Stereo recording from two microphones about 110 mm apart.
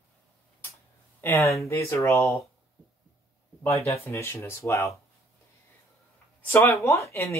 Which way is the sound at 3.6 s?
25° left (ahead or behind).